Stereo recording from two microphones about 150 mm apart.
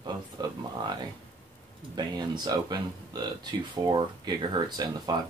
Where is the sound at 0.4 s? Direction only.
25° right (ahead or behind).